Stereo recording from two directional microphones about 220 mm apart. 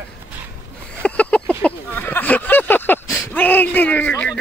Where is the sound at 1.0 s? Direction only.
5° left (ahead or behind).